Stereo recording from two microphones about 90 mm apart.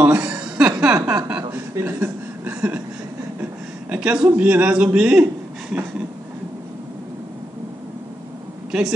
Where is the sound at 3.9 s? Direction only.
10° right (ahead or behind).